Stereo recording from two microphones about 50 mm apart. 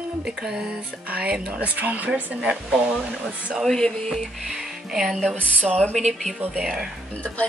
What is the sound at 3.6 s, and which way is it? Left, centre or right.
Music, centre.